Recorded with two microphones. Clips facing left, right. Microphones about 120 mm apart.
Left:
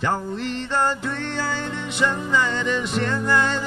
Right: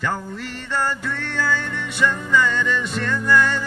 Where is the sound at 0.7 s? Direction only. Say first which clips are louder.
Even; 20° left (ahead or behind).